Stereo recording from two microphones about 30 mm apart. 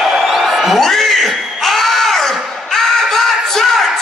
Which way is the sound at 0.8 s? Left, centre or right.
Centre.